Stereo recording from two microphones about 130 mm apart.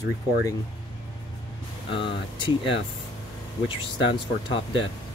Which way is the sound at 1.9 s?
40° left (ahead or behind).